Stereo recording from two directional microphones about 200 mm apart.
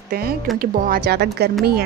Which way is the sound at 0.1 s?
50° right (ahead or behind).